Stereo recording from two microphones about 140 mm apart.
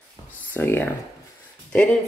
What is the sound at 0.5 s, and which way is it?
Speech, 15° left (ahead or behind).